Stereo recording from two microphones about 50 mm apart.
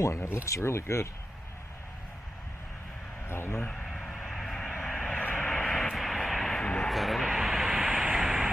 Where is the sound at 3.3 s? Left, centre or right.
Left.